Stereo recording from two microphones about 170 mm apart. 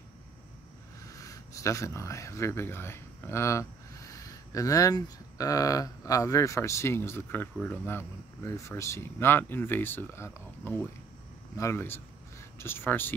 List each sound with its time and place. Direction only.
1.1 s speech: 20° left (ahead or behind)